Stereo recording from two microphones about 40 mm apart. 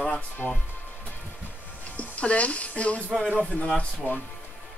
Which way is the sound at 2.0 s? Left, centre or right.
Left.